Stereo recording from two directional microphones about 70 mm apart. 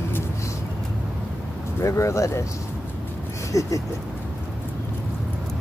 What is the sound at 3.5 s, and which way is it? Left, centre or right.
Speech, left.